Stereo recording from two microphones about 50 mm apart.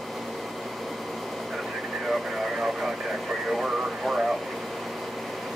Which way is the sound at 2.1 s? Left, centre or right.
Centre.